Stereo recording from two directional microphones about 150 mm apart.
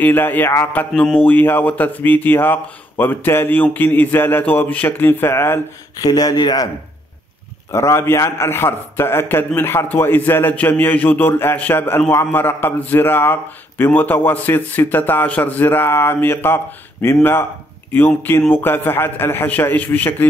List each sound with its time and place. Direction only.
0.0 s a man's voice: 10° left (ahead or behind)
7.7 s a man's voice: 20° left (ahead or behind)